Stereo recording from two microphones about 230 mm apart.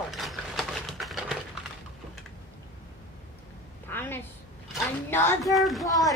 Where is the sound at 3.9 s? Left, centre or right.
Centre.